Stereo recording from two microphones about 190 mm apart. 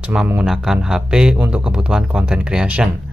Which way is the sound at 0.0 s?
5° right (ahead or behind).